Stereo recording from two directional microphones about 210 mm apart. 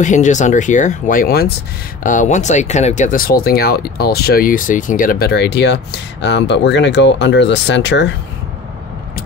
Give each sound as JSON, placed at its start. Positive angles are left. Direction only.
{"t": 0.0, "sound": "speech", "side_deg": 35}